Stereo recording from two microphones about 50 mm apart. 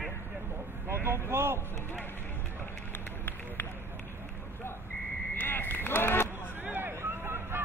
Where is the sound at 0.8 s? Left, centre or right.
Right.